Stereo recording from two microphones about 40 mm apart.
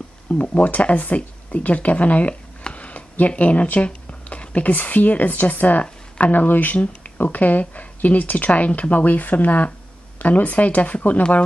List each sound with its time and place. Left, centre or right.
0.3 s speech: left
2.7 s a sound: left
3.8 s speech: left
6.8 s speech: left